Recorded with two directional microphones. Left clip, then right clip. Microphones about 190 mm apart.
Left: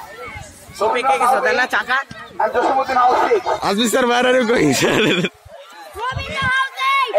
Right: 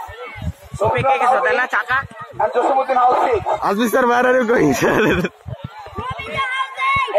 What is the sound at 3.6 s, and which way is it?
Speech, 20° left (ahead or behind).